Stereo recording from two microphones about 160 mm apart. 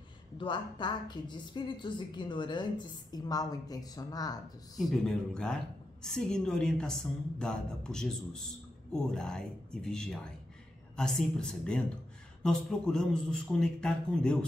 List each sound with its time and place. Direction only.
0.4 s a woman's voice: 30° left (ahead or behind)
4.7 s a woman's voice: centre (ahead or behind)